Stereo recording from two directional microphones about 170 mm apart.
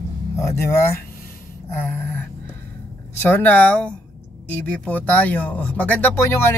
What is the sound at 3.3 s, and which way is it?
Speech, 10° left (ahead or behind).